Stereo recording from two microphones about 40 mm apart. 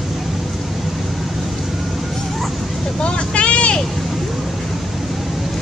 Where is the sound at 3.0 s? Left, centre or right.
Left.